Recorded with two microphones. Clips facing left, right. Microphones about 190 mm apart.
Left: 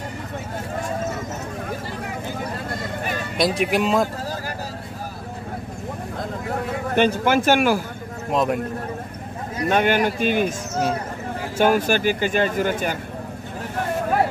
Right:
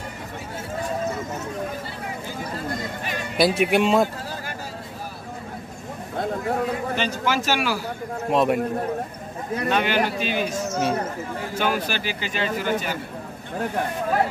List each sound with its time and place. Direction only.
3.3 s speech: centre (ahead or behind)
7.0 s speech: 55° left (ahead or behind)
8.3 s speech: centre (ahead or behind)
9.7 s speech: 50° left (ahead or behind)
11.5 s speech: 50° left (ahead or behind)